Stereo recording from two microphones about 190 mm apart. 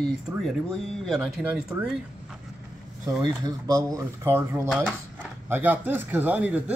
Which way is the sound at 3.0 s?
20° right (ahead or behind).